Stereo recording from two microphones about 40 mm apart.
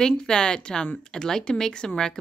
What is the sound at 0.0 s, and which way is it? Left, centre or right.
Speech, centre.